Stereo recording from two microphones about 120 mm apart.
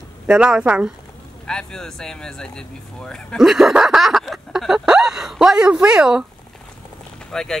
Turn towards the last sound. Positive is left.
turn(degrees=5)  # may be behind; listen again after turning